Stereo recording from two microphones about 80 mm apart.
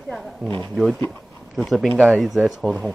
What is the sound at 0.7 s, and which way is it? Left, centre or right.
Speech, centre.